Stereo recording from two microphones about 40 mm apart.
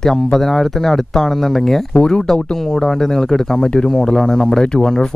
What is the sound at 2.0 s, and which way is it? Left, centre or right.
Speech, centre.